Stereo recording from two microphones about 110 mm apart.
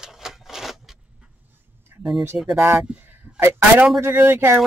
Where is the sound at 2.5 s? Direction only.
20° right (ahead or behind).